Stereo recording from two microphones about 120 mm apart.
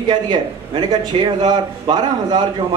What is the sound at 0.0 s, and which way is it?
A man's voice, 40° right (ahead or behind).